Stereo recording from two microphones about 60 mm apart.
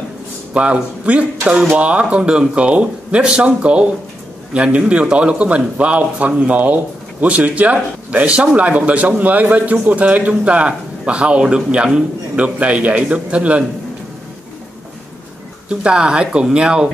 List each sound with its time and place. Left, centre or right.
0.6 s a man's voice: right
15.7 s speech: centre